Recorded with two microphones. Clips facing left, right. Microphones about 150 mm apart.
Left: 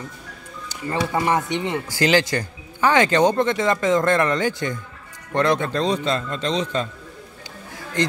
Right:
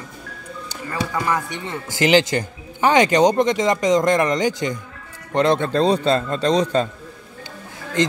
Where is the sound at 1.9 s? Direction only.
20° right (ahead or behind); by 6.8 s 40° right (ahead or behind).